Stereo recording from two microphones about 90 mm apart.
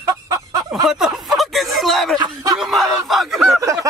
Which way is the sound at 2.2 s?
45° right (ahead or behind).